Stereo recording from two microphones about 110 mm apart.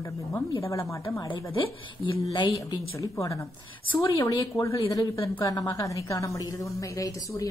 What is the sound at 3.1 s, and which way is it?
Speech, 30° left (ahead or behind).